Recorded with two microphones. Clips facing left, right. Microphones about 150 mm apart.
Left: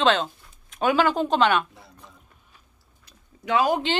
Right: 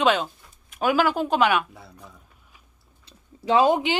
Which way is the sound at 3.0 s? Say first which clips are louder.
Right 5 dB; 30° right (ahead or behind).